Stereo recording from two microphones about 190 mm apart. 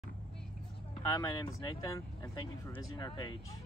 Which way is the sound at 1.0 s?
20° left (ahead or behind).